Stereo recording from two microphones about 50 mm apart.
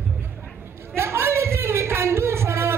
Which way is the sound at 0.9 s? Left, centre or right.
Right.